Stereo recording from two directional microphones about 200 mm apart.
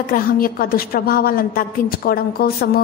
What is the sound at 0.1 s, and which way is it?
A woman's voice, 45° left (ahead or behind).